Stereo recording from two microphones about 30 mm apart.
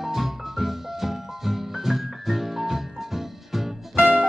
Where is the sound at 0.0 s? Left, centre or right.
Centre.